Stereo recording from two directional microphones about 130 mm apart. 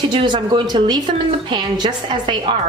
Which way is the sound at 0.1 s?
35° right (ahead or behind).